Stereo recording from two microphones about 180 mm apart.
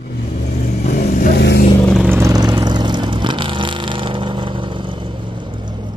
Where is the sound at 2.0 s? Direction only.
15° right (ahead or behind).